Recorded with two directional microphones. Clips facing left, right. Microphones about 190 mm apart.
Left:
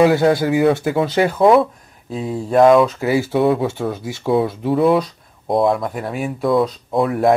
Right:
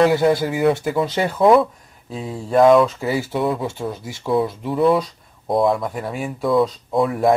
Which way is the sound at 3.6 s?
60° left (ahead or behind).